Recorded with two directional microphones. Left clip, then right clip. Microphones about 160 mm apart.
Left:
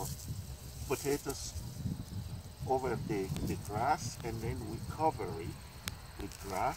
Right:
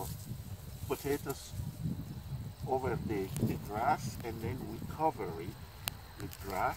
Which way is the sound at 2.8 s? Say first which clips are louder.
Even; centre (ahead or behind).